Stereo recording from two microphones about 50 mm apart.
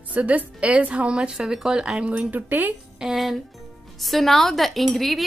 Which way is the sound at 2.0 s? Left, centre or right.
Right.